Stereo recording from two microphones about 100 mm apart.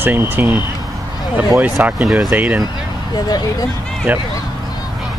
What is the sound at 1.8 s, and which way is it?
Speech, 15° right (ahead or behind).